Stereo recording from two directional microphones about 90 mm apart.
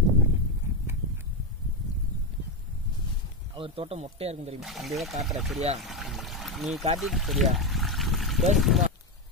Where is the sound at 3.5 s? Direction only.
85° right.